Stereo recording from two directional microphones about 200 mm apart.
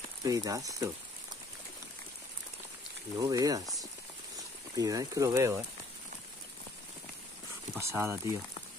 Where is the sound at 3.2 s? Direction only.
20° right (ahead or behind).